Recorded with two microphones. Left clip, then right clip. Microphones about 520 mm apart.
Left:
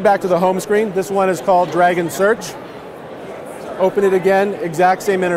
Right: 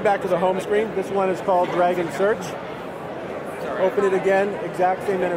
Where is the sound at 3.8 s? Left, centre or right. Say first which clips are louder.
Left 6 dB; left.